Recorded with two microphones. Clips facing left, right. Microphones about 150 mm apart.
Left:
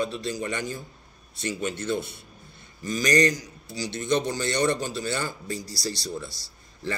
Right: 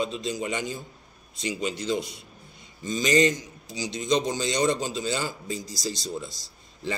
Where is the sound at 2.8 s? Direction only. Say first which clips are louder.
Right 1 dB; 20° right (ahead or behind).